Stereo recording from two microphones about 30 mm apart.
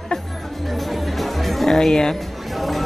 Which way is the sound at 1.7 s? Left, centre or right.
Centre.